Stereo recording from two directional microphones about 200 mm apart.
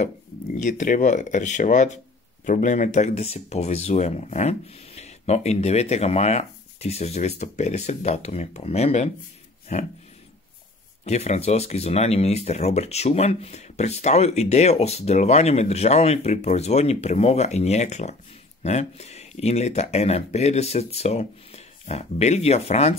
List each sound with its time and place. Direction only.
0.6 s speech: 40° left (ahead or behind)
11.1 s speech: 35° left (ahead or behind)